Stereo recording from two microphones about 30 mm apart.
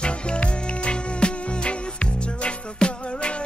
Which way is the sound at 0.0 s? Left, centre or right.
Left.